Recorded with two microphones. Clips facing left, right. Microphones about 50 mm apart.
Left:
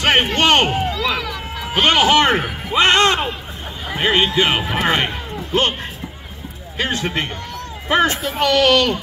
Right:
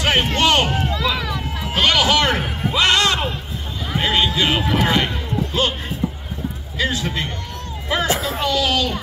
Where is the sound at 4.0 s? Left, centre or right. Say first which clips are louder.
Left 3 dB; left.